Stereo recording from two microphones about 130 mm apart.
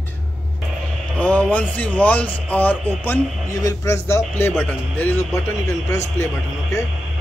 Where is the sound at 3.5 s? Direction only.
25° left (ahead or behind).